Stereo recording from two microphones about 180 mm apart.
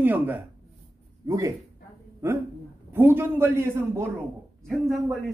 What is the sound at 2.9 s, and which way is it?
A man's voice, 15° right (ahead or behind).